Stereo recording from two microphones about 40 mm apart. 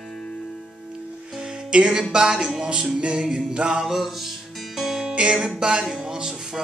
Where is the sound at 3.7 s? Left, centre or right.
Centre.